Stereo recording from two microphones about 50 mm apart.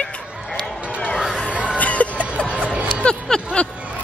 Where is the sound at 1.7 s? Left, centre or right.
Left.